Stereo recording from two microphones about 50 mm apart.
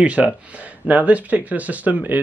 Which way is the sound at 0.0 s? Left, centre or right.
Right.